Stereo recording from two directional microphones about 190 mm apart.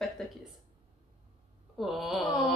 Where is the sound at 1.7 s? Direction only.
Centre (ahead or behind).